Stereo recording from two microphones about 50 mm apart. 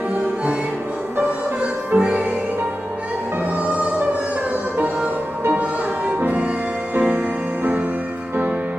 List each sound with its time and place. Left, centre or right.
2.0 s music: right
5.6 s music: right